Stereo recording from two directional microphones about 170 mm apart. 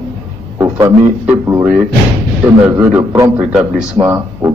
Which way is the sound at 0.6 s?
15° right (ahead or behind).